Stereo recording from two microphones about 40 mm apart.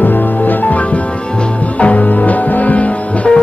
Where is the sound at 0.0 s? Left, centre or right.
Left.